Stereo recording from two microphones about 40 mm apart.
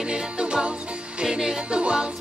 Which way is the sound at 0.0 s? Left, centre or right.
Right.